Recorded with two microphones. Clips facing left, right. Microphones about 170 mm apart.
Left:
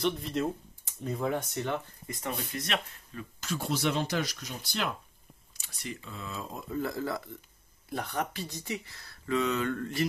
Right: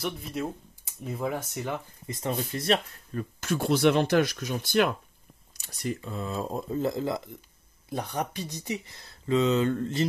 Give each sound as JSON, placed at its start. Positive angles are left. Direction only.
{"t": 0.0, "sound": "speech", "side_deg": -5}
{"t": 2.0, "sound": "speech", "side_deg": -25}
{"t": 5.6, "sound": "speech", "side_deg": -40}